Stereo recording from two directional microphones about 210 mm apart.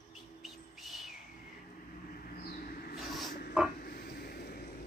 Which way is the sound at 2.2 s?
45° left (ahead or behind).